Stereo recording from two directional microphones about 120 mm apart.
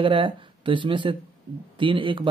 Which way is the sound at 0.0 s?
45° right (ahead or behind).